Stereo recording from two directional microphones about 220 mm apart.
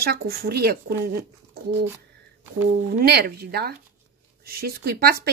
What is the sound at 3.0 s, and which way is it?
Speech, 45° right (ahead or behind).